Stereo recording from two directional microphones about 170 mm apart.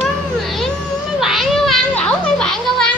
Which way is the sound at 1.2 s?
Centre (ahead or behind).